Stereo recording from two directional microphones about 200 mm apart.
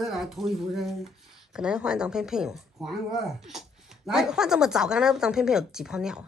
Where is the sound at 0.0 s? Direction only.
Centre (ahead or behind).